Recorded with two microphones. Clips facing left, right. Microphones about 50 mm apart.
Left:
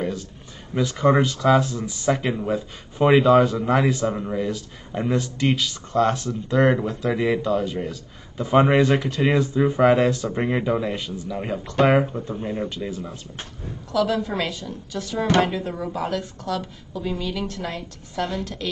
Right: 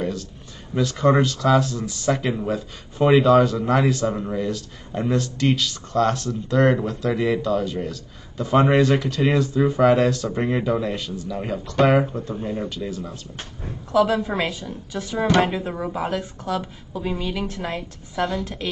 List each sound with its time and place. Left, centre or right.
0.7 s speech: centre
4.5 s speech: centre
13.9 s a woman's voice: right